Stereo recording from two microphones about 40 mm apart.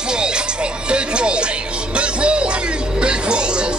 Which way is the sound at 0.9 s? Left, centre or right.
Right.